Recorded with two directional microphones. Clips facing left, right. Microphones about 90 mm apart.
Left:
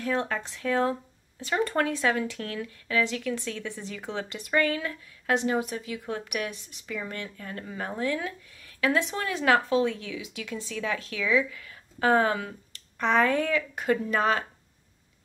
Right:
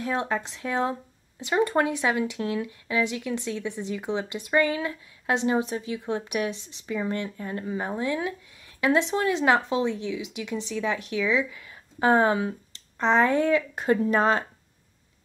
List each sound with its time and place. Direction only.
0.1 s speech: 20° right (ahead or behind)